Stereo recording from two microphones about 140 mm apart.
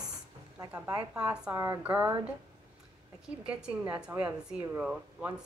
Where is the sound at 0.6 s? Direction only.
25° right (ahead or behind).